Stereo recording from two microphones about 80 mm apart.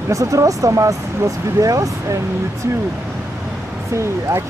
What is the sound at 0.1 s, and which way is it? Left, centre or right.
Speech, right.